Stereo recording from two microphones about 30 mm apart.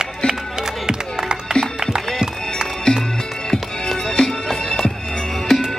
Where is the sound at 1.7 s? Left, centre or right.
Right.